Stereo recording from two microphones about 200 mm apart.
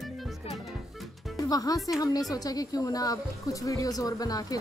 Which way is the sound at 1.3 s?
20° left (ahead or behind).